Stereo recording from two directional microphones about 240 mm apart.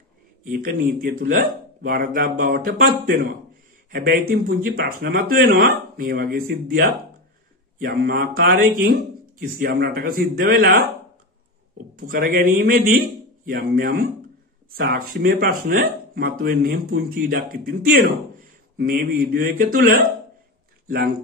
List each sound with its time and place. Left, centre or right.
0.5 s speech: right
12.1 s speech: right